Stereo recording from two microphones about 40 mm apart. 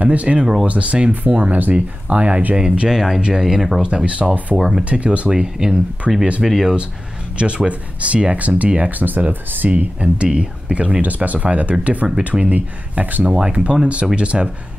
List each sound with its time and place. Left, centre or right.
0.0 s speech: right
2.5 s speech: right
2.9 s speech: centre
3.2 s speech: right
3.4 s speech: centre
3.8 s speech: right
4.6 s speech: centre
4.8 s speech: right
5.3 s speech: centre
7.3 s speech: right
9.0 s speech: right
9.7 s speech: right
10.0 s speech: right
13.2 s speech: right